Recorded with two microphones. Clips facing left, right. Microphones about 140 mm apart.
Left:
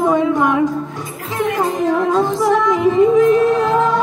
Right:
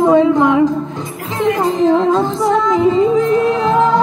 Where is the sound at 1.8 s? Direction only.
20° right (ahead or behind).